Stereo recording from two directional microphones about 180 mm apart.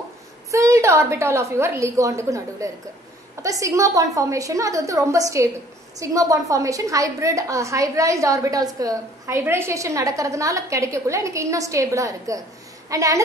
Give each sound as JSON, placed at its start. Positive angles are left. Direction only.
{"t": 0.5, "sound": "a woman's voice", "side_deg": -15}